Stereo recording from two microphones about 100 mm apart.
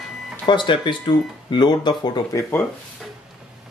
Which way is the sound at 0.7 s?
55° left (ahead or behind).